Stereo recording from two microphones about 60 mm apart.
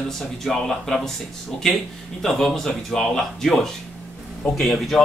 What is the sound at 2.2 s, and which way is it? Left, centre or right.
Speech, centre.